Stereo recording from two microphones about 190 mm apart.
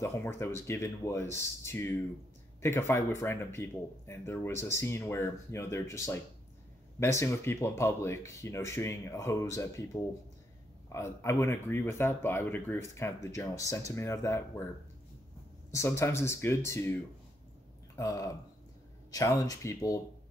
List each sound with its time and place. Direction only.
0.0 s speech: 15° left (ahead or behind)
10.9 s speech: 15° left (ahead or behind)
15.7 s speech: 15° left (ahead or behind)
17.9 s speech: 15° left (ahead or behind)